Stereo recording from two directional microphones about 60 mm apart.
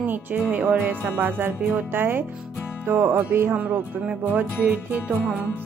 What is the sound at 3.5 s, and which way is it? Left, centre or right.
Music, right.